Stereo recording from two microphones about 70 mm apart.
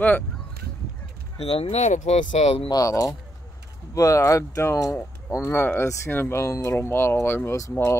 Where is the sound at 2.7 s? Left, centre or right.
Left.